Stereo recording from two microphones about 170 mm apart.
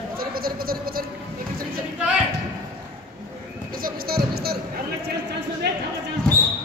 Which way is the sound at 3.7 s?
60° right (ahead or behind).